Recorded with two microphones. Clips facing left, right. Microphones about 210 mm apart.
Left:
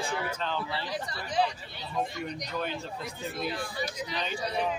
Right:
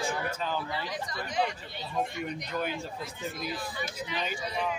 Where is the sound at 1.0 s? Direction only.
35° left (ahead or behind).